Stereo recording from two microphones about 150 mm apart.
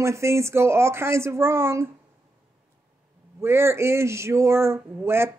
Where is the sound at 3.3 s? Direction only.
15° right (ahead or behind).